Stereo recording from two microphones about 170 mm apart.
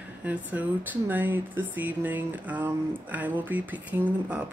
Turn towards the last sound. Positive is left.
turn(degrees=-10)  # may be behind; listen again after turning